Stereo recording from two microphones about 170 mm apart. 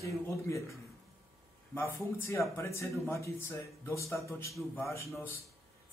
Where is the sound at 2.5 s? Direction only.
15° left (ahead or behind).